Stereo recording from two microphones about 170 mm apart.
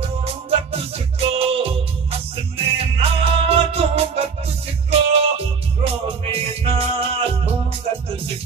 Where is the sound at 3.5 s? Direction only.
35° right (ahead or behind).